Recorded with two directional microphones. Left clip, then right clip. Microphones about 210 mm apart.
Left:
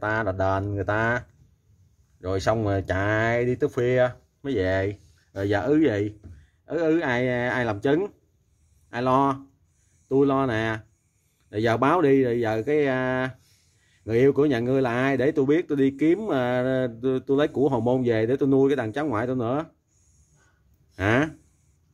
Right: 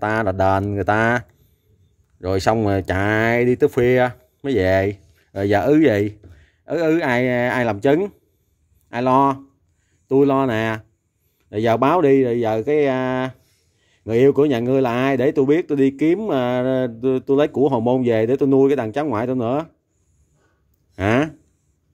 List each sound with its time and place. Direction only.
0.0 s a man's voice: 35° right (ahead or behind)
20.9 s speech: 30° right (ahead or behind)